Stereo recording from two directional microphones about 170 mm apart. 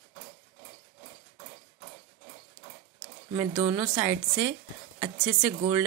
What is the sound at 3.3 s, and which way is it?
A woman's voice, 15° right (ahead or behind).